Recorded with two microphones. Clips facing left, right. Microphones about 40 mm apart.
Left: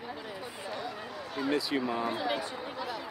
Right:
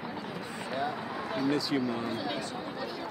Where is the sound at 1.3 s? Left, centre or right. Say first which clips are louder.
Right 1 dB; centre.